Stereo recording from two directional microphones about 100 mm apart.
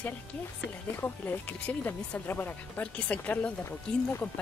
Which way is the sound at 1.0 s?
20° left (ahead or behind).